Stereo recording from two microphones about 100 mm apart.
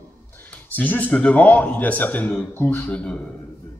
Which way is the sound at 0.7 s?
15° left (ahead or behind).